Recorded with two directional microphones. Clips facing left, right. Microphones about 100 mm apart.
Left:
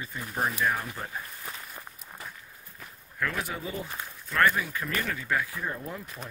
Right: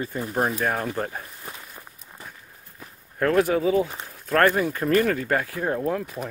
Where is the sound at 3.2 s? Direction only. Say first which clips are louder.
Right 12 dB; 50° right (ahead or behind).